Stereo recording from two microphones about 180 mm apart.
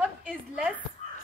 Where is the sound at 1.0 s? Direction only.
40° left (ahead or behind).